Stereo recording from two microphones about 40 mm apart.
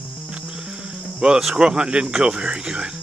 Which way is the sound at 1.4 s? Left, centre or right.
Centre.